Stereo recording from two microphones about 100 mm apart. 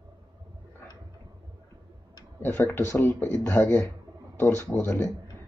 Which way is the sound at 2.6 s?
25° left (ahead or behind).